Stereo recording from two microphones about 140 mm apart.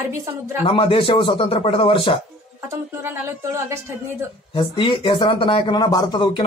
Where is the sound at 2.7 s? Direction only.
15° right (ahead or behind).